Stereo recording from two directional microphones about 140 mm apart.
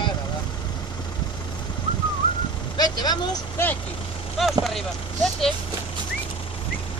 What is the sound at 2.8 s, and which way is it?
Speech, 30° left (ahead or behind).